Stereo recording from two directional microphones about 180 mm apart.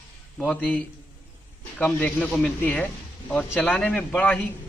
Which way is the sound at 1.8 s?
5° left (ahead or behind).